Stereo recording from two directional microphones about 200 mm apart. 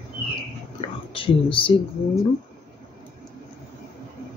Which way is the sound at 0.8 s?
25° left (ahead or behind).